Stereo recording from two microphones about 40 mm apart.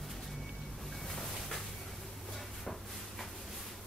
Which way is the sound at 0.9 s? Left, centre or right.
Centre.